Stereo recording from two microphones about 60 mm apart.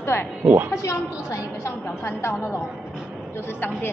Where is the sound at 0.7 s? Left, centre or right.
Left.